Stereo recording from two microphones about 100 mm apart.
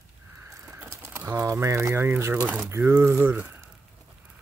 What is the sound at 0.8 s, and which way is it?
Speech, 25° right (ahead or behind).